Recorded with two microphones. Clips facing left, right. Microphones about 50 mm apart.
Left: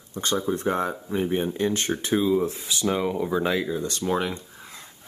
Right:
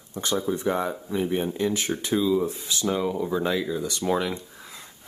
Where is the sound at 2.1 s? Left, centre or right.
Left.